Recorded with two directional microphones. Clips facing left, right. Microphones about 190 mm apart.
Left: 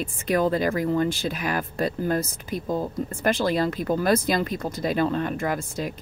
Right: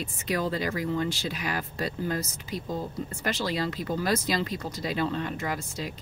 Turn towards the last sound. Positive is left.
turn(degrees=50)  # may be behind; listen again after turning